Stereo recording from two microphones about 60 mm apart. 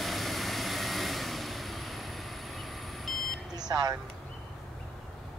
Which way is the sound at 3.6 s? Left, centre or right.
Right.